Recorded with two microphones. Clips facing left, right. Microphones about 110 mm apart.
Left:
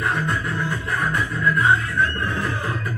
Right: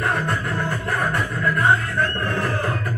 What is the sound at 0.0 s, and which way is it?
Music, 55° right (ahead or behind).